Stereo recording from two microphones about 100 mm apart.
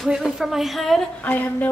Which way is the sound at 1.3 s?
20° left (ahead or behind).